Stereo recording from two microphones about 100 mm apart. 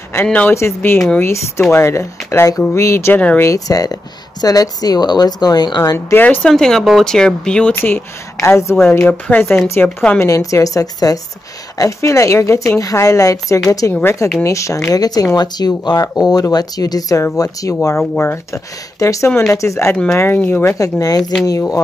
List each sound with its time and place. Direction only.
0.1 s speech: 15° left (ahead or behind)
0.6 s speech: 25° left (ahead or behind)
0.9 s speech: 5° left (ahead or behind)
1.2 s speech: 30° left (ahead or behind)
3.2 s speech: 15° left (ahead or behind)
3.4 s speech: 35° left (ahead or behind)
5.9 s speech: 20° left (ahead or behind)
6.4 s speech: 5° left (ahead or behind)
7.7 s speech: 25° left (ahead or behind)
9.0 s speech: 15° left (ahead or behind); by 17.7 s 35° left (ahead or behind)
18.1 s speech: 20° left (ahead or behind)
20.7 s speech: 35° left (ahead or behind)
21.2 s speech: 5° left (ahead or behind)
21.5 s speech: 35° left (ahead or behind)